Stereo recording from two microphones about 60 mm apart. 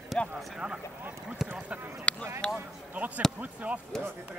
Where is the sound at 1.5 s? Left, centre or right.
Right.